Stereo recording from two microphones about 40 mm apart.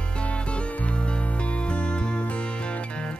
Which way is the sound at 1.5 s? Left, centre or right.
Left.